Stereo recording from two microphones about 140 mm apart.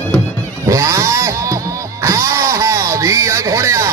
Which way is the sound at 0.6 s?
25° right (ahead or behind).